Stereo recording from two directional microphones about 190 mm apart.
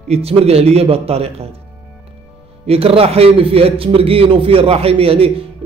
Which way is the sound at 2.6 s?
30° right (ahead or behind).